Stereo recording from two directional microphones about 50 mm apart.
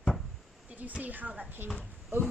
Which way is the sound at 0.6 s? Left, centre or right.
Right.